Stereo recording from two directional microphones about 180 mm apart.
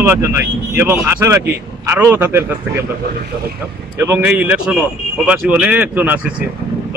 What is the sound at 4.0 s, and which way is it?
Speech, 10° right (ahead or behind).